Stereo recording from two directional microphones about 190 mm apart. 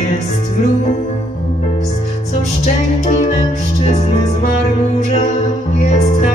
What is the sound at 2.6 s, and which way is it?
Music, 35° left (ahead or behind).